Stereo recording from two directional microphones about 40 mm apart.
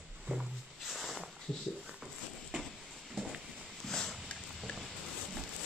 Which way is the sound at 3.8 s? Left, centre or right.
Centre.